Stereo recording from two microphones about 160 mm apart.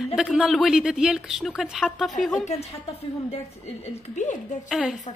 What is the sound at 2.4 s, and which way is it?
Speech, 45° left (ahead or behind).